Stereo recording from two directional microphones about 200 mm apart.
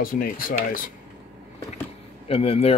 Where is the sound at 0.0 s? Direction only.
45° left (ahead or behind).